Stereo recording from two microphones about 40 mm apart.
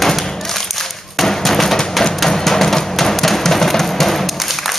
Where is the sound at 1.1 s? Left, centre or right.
Centre.